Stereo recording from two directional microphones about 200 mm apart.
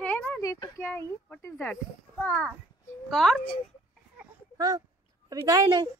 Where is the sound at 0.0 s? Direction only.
10° left (ahead or behind).